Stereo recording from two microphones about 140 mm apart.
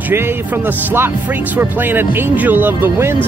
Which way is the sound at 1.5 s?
15° right (ahead or behind).